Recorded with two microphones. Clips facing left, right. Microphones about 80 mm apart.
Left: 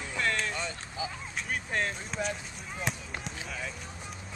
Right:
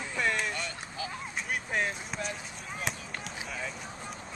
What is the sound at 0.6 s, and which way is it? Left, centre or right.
Speech, centre.